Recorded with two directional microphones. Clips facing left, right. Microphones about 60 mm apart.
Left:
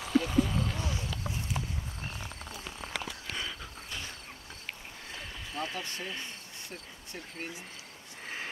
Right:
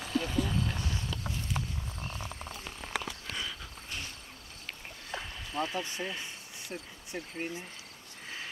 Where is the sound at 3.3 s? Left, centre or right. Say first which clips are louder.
Left 1 dB; centre.